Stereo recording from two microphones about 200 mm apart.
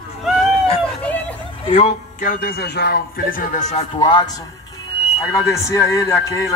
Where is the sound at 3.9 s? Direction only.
20° left (ahead or behind).